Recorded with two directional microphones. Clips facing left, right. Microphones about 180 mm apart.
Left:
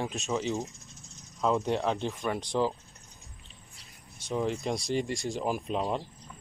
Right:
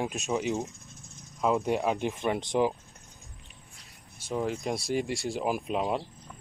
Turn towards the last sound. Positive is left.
turn(degrees=-5)  # may be behind; listen again after turning